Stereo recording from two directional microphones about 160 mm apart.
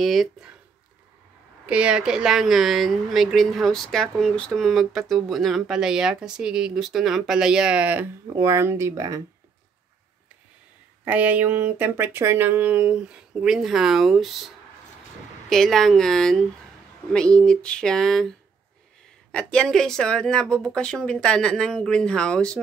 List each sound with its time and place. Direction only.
0.0 s speech: centre (ahead or behind)
1.7 s speech: 5° right (ahead or behind)
11.1 s speech: 10° right (ahead or behind)
15.5 s speech: centre (ahead or behind)
19.3 s speech: 5° left (ahead or behind)